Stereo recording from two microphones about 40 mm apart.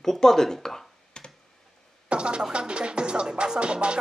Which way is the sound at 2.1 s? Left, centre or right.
Right.